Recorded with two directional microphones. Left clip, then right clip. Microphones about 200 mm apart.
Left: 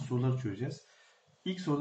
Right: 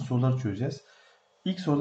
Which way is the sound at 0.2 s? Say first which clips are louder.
Right 6 dB; 50° right (ahead or behind).